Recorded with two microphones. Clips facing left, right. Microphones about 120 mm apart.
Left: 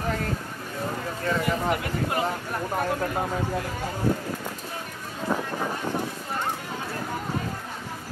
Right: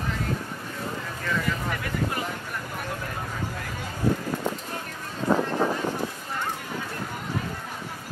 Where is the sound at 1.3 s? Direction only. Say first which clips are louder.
Left 4 dB; 25° left (ahead or behind).